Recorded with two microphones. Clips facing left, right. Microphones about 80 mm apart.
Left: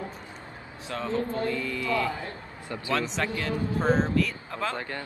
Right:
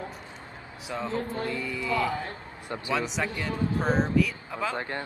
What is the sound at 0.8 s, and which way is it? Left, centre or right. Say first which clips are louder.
Speech: left 2 dB; centre.